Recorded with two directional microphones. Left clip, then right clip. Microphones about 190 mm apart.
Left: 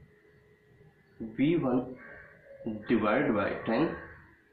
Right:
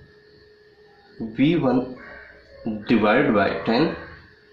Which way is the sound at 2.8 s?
15° right (ahead or behind).